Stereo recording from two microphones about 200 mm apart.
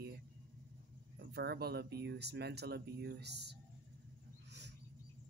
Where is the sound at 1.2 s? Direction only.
55° right (ahead or behind).